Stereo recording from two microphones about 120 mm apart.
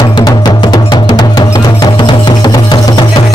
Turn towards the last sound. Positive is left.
turn(degrees=40)  # may be behind; listen again after turning